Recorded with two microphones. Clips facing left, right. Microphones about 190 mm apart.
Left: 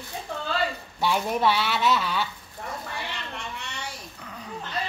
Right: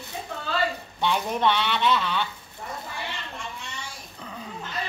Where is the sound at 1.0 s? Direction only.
5° left (ahead or behind).